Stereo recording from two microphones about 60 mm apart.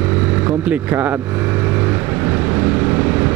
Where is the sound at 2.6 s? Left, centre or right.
Right.